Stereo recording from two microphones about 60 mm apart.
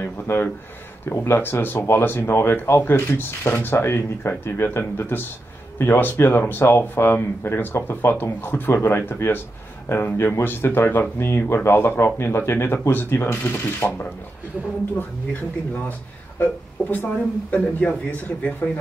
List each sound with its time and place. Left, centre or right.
0.0 s speech: left
16.3 s speech: left